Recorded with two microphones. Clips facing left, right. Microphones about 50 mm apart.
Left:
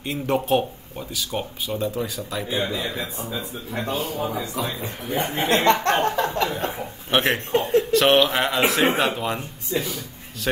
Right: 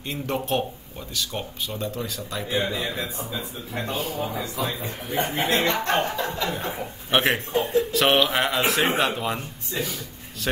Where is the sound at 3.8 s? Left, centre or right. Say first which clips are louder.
Left 2 dB; left.